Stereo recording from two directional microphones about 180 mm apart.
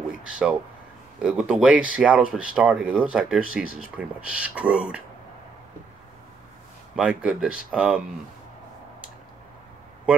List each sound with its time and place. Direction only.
0.2 s speech: 5° right (ahead or behind)
7.0 s speech: 5° right (ahead or behind)